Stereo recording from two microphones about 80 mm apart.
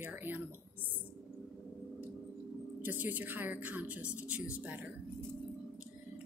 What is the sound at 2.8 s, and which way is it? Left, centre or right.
Speech, right.